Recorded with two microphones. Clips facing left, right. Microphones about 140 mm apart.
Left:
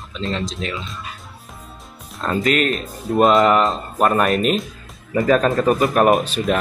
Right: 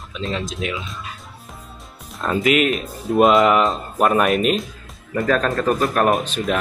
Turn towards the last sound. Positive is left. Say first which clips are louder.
# left 3 dB
turn(degrees=5)  # may be behind; listen again after turning